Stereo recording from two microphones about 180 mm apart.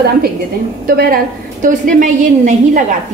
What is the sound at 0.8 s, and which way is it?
A woman's voice, 55° right (ahead or behind).